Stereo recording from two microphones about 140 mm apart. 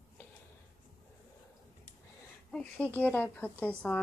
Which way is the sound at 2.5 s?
10° left (ahead or behind).